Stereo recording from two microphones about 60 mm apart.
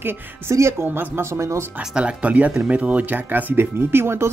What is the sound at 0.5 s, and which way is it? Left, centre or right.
Speech, right.